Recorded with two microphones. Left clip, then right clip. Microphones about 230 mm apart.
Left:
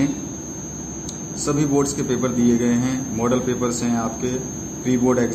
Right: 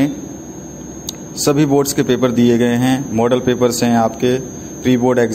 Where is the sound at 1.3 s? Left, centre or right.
Right.